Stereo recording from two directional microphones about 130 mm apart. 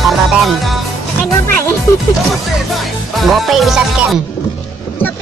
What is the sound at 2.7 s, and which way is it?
Music, centre (ahead or behind).